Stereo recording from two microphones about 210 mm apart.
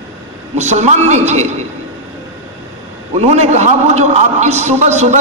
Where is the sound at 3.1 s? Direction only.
30° right (ahead or behind).